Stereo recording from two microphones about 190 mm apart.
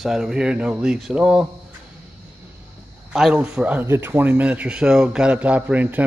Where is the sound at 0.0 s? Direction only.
Centre (ahead or behind).